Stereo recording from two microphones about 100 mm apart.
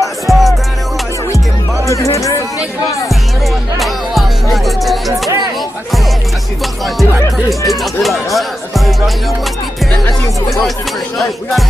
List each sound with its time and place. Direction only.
0.0 s music: centre (ahead or behind)
1.9 s music: 30° left (ahead or behind)
3.8 s music: centre (ahead or behind)
7.0 s music: centre (ahead or behind)